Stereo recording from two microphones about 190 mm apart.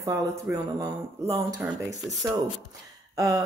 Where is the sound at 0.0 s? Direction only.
15° right (ahead or behind).